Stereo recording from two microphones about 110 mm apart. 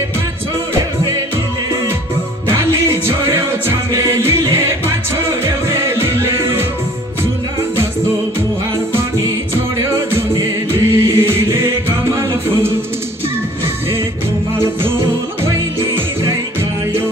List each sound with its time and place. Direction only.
2.4 s music: 25° right (ahead or behind)
9.8 s music: 25° right (ahead or behind)